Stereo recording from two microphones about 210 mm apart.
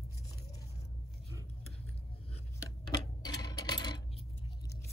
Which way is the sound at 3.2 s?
20° left (ahead or behind).